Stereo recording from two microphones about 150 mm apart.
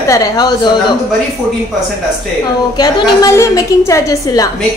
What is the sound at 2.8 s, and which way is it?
A woman's voice, 25° left (ahead or behind).